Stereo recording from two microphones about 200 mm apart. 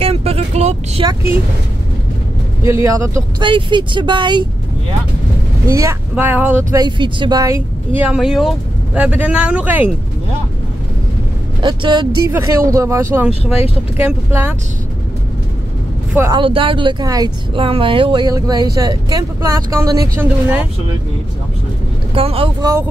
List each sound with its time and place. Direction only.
0.0 s vehicle: 30° right (ahead or behind)
1.0 s speech: 10° right (ahead or behind)
2.6 s speech: 15° right (ahead or behind)
5.7 s speech: 15° right (ahead or behind)
6.8 s speech: 20° right (ahead or behind)
8.0 s speech: 5° right (ahead or behind)
11.6 s speech: 20° right (ahead or behind)
16.3 s speech: 25° right (ahead or behind); by 20.6 s 10° right (ahead or behind)
22.1 s speech: 30° right (ahead or behind)